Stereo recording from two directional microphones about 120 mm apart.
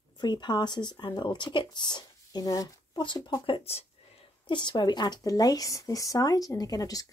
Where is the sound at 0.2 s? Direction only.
40° left (ahead or behind); by 3.8 s 55° left (ahead or behind).